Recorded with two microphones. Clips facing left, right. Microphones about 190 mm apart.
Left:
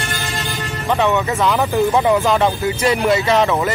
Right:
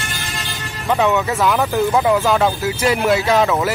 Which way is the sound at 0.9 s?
10° right (ahead or behind).